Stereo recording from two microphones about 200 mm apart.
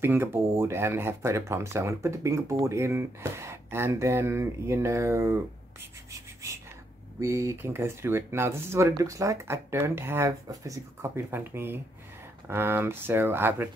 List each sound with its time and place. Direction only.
0.0 s speech: 10° right (ahead or behind)
7.2 s speech: 15° right (ahead or behind)